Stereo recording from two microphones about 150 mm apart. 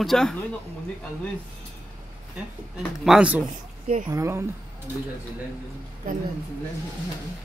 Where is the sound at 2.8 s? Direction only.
5° right (ahead or behind).